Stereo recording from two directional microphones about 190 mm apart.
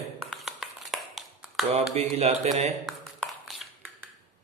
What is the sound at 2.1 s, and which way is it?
Speech, 35° right (ahead or behind).